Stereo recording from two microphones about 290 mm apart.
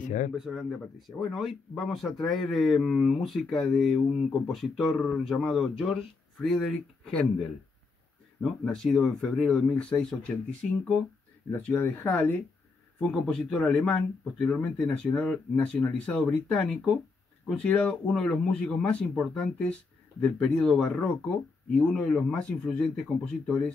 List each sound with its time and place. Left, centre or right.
0.0 s speech: left
0.4 s speech: centre
8.4 s speech: centre